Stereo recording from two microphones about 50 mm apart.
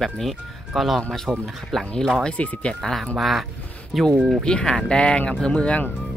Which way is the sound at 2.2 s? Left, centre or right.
Left.